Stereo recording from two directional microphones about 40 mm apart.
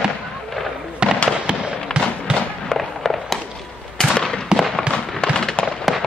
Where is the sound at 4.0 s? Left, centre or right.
Centre.